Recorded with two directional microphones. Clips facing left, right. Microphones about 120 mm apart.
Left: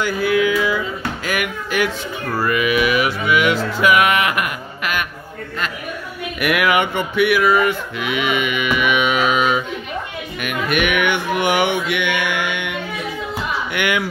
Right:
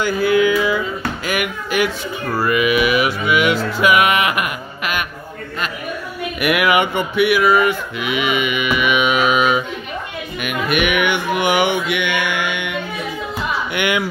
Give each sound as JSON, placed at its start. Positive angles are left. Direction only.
{"t": 0.0, "sound": "music", "side_deg": -30}
{"t": 1.2, "sound": "a sound", "side_deg": -15}
{"t": 2.3, "sound": "music", "side_deg": -15}
{"t": 6.4, "sound": "a sound", "side_deg": -15}
{"t": 10.4, "sound": "music", "side_deg": -10}
{"t": 13.7, "sound": "speech", "side_deg": -20}